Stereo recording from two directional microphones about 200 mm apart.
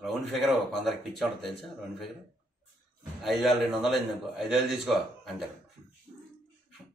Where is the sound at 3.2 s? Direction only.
Centre (ahead or behind).